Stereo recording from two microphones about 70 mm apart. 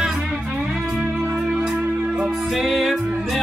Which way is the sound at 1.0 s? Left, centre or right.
Right.